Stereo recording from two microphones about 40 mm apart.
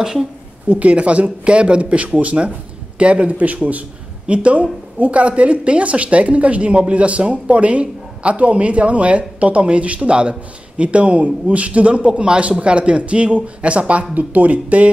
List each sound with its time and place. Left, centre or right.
0.7 s speech: right